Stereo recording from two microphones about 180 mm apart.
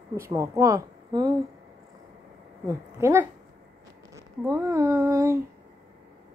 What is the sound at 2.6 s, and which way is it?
A woman's voice, 15° right (ahead or behind).